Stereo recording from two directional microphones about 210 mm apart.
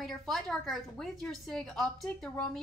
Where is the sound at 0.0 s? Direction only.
Centre (ahead or behind).